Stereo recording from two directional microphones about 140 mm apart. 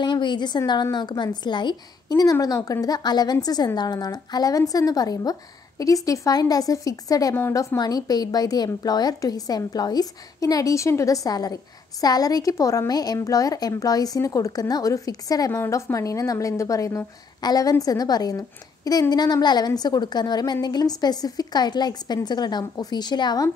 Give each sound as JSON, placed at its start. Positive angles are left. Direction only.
{"t": 0.0, "sound": "a woman's voice", "side_deg": 35}